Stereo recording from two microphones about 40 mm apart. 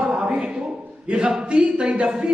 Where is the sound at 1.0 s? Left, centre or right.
Right.